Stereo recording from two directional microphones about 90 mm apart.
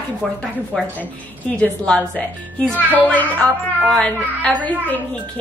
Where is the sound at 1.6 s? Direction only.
15° left (ahead or behind).